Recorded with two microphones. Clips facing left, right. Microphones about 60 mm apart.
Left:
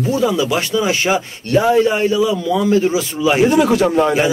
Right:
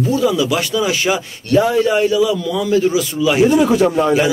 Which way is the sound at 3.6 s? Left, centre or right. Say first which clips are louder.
Even; left.